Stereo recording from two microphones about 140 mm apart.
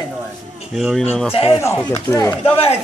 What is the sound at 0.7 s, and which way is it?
Speech, centre (ahead or behind).